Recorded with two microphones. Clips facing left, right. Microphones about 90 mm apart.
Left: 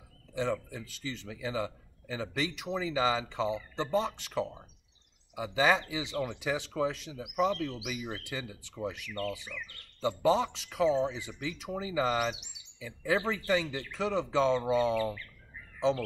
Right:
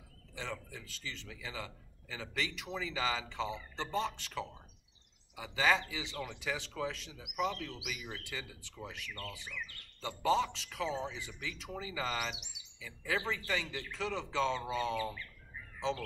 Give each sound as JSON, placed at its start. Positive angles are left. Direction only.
{"t": 0.3, "sound": "a man's voice", "side_deg": 20}